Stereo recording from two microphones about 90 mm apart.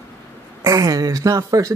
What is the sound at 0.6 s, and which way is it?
Speech, 35° right (ahead or behind).